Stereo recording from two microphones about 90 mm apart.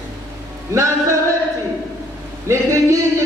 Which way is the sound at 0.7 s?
35° right (ahead or behind).